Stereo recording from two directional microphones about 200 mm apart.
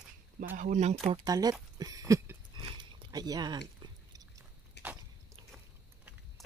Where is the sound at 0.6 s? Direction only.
35° right (ahead or behind).